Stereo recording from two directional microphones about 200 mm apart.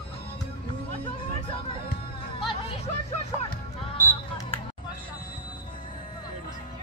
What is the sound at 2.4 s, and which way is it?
Music, 25° left (ahead or behind).